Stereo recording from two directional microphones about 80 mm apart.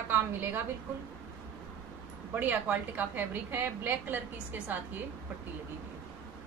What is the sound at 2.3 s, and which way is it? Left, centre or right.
A woman's voice, right.